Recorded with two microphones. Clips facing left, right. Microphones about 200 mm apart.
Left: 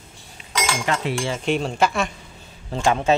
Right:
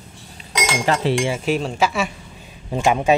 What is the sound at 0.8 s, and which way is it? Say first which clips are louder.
Speech: right 7 dB; 35° right (ahead or behind).